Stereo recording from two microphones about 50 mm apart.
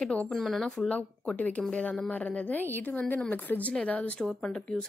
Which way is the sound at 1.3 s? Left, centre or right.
Left.